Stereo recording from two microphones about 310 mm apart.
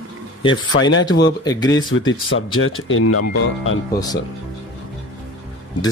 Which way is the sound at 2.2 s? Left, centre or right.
Left.